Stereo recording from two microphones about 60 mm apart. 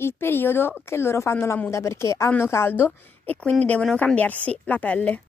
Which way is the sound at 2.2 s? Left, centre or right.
Left.